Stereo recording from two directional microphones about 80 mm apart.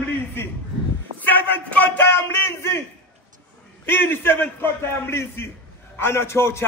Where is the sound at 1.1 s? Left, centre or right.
Left.